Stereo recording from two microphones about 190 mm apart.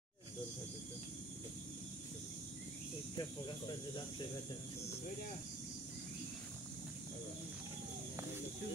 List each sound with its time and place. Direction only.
3.2 s speech: 25° left (ahead or behind)